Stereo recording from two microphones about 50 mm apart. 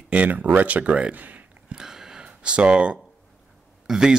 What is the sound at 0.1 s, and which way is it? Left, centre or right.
Speech, right.